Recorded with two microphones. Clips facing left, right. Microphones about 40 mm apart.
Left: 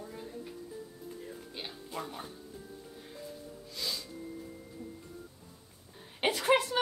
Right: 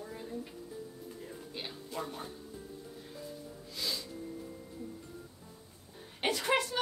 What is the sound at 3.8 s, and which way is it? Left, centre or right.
Snort, centre.